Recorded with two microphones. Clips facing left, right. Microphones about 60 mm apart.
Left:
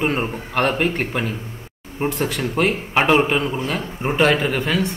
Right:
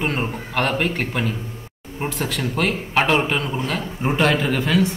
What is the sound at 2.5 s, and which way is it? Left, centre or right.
Speech, centre.